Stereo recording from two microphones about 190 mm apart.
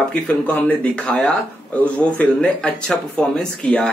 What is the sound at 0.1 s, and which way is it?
A man's voice, 10° left (ahead or behind).